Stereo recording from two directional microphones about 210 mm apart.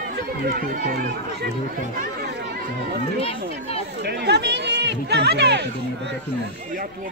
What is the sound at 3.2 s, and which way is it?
Speech, 30° left (ahead or behind).